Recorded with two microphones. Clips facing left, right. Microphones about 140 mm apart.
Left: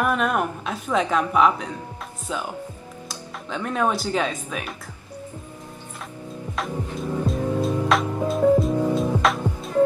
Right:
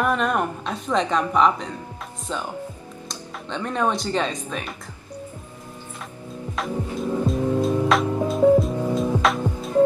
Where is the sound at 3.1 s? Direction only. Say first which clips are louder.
Even; 5° left (ahead or behind).